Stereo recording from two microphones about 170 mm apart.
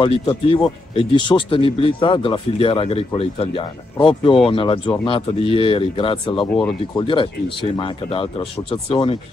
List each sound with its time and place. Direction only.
0.0 s speech: 30° left (ahead or behind)
6.4 s speech: 5° left (ahead or behind)
7.0 s speech: 30° left (ahead or behind)